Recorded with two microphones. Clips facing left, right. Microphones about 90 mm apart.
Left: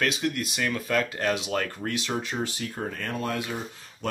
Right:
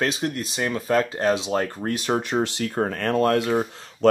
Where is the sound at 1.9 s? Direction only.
45° right (ahead or behind).